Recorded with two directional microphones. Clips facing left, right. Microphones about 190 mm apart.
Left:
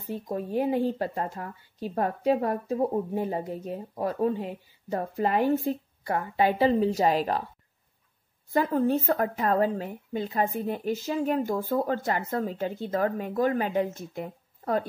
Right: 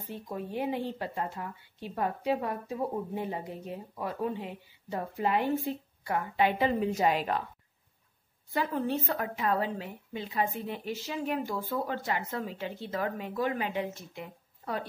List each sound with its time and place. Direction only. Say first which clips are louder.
0.1 s speech: left 7 dB; 40° left (ahead or behind)
8.5 s a woman's voice: left 6 dB; 45° left (ahead or behind)